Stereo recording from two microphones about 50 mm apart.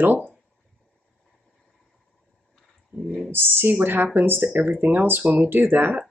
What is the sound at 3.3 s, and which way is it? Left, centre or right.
Speech, right.